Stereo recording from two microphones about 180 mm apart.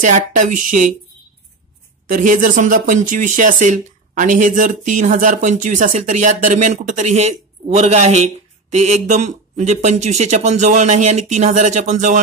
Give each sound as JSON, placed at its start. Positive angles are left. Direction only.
{"t": 0.0, "sound": "speech", "side_deg": -45}
{"t": 2.0, "sound": "speech", "side_deg": -45}